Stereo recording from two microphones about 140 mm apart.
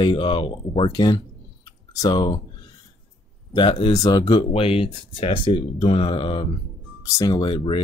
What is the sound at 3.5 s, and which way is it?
Speech, 35° left (ahead or behind).